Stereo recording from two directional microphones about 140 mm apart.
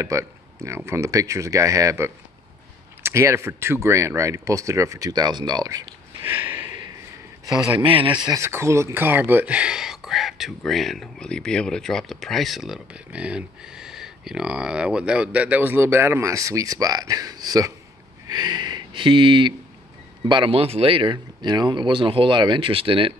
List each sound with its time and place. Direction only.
0.0 s speech: 20° right (ahead or behind)
6.2 s a sound: 10° right (ahead or behind)
7.7 s speech: 40° right (ahead or behind)
8.4 s speech: 20° right (ahead or behind)
18.2 s a sound: 30° right (ahead or behind)
20.2 s speech: 40° right (ahead or behind)